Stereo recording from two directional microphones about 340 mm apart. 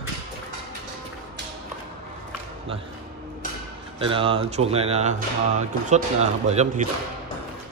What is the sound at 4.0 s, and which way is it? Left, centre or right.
Speech, centre.